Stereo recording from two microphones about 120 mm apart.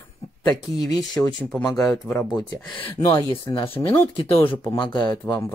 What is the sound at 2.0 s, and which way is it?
Speech, 15° left (ahead or behind).